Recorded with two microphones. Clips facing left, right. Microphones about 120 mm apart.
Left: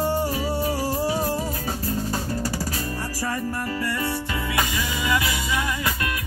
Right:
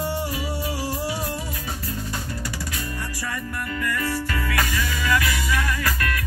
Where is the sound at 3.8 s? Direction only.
25° left (ahead or behind).